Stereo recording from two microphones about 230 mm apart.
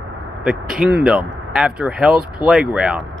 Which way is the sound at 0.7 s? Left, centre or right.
Centre.